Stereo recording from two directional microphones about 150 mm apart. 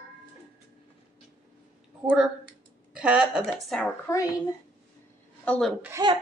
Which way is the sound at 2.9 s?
10° right (ahead or behind).